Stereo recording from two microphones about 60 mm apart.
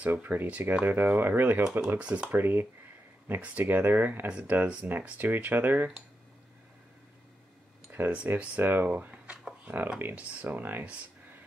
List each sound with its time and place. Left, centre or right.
0.0 s speech: right
1.6 s speech: centre
2.3 s speech: right
8.0 s speech: right
9.1 s a sound: centre
9.9 s speech: right